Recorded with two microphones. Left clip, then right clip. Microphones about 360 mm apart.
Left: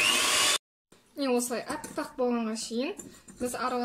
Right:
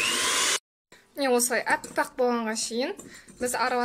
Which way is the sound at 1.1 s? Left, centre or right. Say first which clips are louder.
Right 5 dB; centre.